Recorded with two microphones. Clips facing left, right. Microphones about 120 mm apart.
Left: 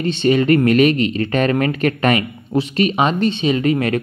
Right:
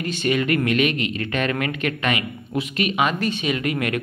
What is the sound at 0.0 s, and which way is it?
Speech, 30° left (ahead or behind).